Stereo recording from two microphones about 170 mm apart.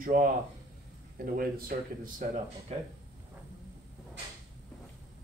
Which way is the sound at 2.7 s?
40° right (ahead or behind).